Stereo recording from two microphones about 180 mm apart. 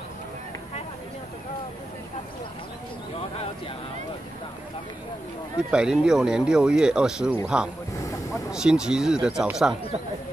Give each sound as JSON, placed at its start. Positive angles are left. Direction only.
{"t": 5.7, "sound": "speech", "side_deg": -5}
{"t": 7.9, "sound": "a sound", "side_deg": 15}
{"t": 8.3, "sound": "speech", "side_deg": -5}